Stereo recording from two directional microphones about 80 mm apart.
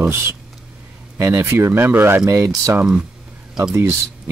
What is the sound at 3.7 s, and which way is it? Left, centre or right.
Speech, right.